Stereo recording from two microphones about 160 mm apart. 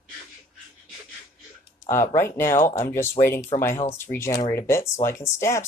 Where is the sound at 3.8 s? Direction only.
15° left (ahead or behind).